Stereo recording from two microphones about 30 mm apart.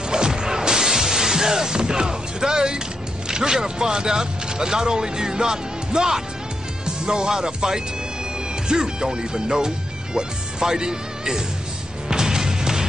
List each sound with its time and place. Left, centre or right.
0.1 s music: right
3.3 s speech: right
12.1 s music: right